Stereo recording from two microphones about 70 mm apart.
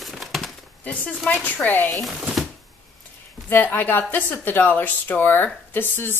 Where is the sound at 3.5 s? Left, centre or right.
Left.